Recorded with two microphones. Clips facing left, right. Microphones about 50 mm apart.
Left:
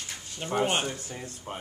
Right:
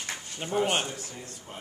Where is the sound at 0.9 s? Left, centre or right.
Left.